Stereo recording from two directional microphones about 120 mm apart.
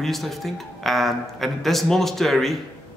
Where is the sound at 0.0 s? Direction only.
Centre (ahead or behind).